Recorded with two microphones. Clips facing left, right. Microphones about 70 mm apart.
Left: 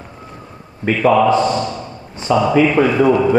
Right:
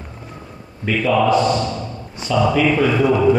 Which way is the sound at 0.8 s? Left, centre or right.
Left.